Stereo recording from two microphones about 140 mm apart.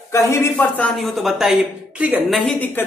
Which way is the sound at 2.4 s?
10° left (ahead or behind).